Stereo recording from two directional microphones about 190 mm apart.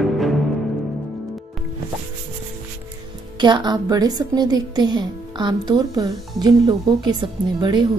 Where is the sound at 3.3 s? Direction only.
25° right (ahead or behind).